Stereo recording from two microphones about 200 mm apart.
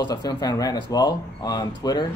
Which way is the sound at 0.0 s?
20° left (ahead or behind).